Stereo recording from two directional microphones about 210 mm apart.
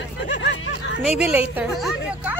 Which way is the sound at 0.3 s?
60° left (ahead or behind).